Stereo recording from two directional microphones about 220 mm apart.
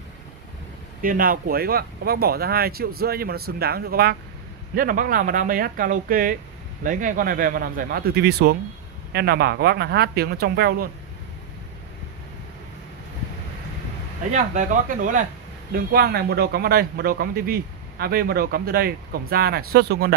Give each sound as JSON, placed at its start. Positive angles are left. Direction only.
{"t": 1.0, "sound": "speech", "side_deg": -40}
{"t": 14.3, "sound": "speech", "side_deg": -35}